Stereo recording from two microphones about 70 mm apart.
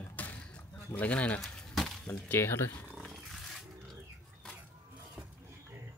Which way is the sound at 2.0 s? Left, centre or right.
Left.